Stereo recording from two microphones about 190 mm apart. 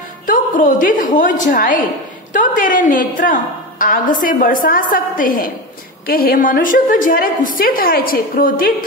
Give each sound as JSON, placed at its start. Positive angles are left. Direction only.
{"t": 0.3, "sound": "a woman's voice", "side_deg": 45}